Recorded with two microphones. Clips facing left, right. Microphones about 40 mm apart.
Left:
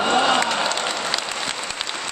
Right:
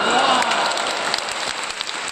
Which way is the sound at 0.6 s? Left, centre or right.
Centre.